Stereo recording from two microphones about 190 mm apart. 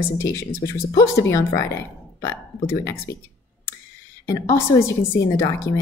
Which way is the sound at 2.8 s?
15° left (ahead or behind).